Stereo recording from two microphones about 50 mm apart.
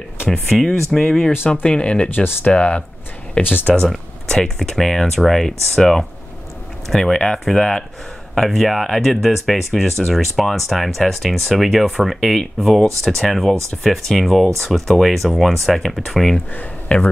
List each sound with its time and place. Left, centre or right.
0.3 s speech: centre
1.5 s speech: left
4.4 s speech: centre
16.5 s speech: left